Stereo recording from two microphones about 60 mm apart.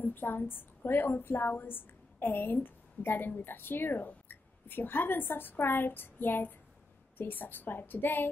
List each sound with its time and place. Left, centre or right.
0.0 s a woman's voice: left